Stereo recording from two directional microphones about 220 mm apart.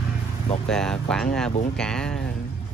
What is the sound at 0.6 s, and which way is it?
Speech, centre (ahead or behind).